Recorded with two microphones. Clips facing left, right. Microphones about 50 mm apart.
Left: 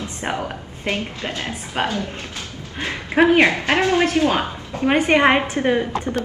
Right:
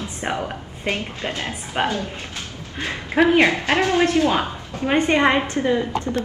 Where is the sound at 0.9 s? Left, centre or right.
Right.